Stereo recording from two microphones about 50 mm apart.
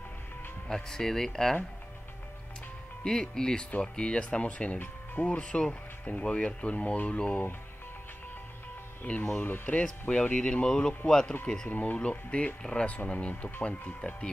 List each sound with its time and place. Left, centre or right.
0.7 s speech: centre
3.0 s speech: centre
9.1 s speech: left
9.4 s speech: left
9.8 s speech: left
11.7 s speech: left